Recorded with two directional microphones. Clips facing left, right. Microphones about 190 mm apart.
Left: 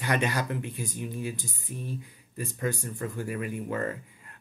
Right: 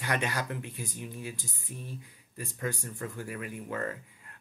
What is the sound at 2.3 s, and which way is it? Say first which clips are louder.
Speech: left 4 dB; 30° left (ahead or behind).